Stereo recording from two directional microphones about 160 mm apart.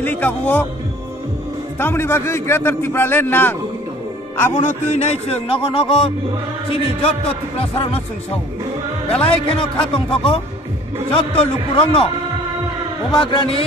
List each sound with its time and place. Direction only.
0.0 s a man's voice: 10° left (ahead or behind)
1.8 s a man's voice: 15° left (ahead or behind)
4.6 s music: 50° left (ahead or behind)
9.1 s music: 35° left (ahead or behind)
13.1 s music: 30° left (ahead or behind)